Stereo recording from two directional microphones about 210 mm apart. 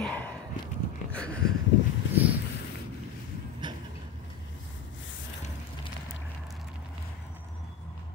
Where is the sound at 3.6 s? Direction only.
20° right (ahead or behind).